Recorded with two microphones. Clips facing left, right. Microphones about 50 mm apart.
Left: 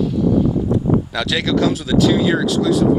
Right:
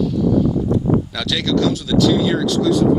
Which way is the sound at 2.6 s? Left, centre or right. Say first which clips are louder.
Right 2 dB; centre.